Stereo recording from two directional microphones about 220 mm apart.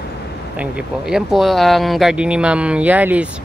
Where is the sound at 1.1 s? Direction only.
Centre (ahead or behind).